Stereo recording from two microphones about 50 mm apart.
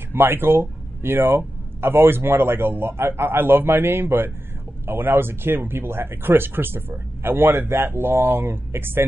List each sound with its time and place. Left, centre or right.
0.1 s speech: right